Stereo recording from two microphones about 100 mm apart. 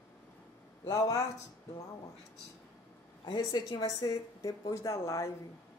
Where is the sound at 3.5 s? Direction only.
40° left (ahead or behind).